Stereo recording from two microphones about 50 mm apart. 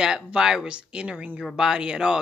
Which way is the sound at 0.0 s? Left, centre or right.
Centre.